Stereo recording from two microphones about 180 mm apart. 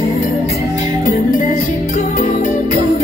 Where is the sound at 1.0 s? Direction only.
50° left (ahead or behind).